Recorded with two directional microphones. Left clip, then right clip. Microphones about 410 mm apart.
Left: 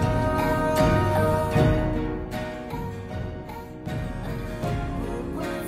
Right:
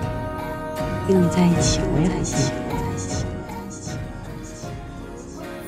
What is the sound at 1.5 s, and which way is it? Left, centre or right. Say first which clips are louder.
Music: right 1 dB; centre.